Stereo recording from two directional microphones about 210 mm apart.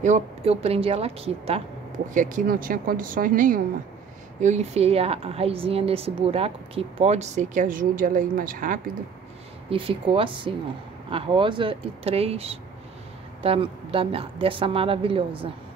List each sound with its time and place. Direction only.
0.0 s a woman's voice: 30° right (ahead or behind)
2.0 s a woman's voice: 40° right (ahead or behind)
9.7 s a woman's voice: 25° right (ahead or behind)